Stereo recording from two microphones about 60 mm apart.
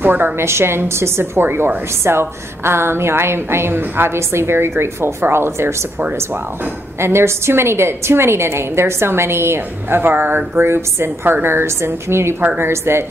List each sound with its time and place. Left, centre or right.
0.0 s a woman's voice: right
7.0 s a woman's voice: right